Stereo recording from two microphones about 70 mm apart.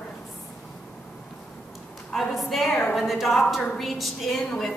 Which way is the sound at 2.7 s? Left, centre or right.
Left.